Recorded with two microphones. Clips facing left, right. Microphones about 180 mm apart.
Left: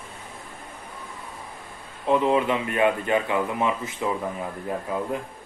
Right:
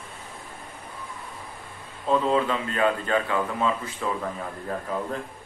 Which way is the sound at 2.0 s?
20° left (ahead or behind).